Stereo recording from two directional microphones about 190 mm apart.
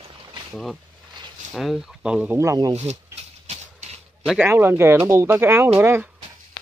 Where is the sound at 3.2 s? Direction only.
35° right (ahead or behind).